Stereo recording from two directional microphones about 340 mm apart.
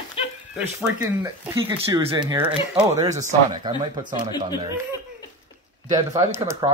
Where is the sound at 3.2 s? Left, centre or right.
Right.